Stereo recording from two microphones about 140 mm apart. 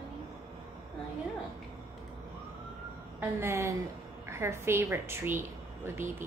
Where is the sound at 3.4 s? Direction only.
20° right (ahead or behind).